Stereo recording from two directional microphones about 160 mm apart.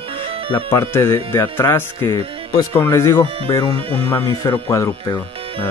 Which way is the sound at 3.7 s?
35° right (ahead or behind).